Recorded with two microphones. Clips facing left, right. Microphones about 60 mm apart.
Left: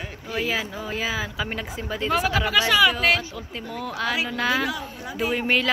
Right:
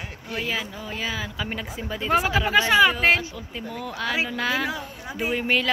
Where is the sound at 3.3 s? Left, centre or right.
Centre.